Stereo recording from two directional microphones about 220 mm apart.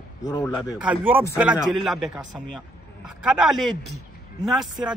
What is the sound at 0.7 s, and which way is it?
A man's voice, 5° right (ahead or behind).